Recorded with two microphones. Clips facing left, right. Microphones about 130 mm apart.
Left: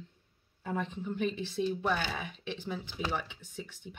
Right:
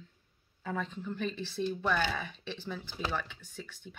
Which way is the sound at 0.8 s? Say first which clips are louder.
Left 3 dB; 20° left (ahead or behind).